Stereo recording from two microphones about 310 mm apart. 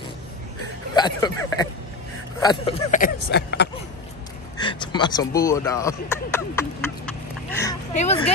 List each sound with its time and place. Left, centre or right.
0.9 s speech: centre; by 3.7 s left
4.6 s speech: centre
7.1 s a sound: centre
7.9 s speech: left